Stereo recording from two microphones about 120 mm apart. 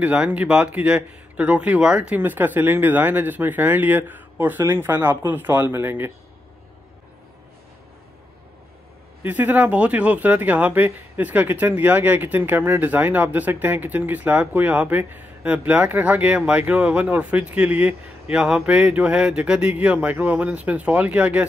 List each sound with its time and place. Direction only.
0.0 s speech: 10° right (ahead or behind)
9.2 s speech: 15° right (ahead or behind)